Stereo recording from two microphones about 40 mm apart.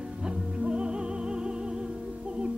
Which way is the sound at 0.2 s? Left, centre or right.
Right.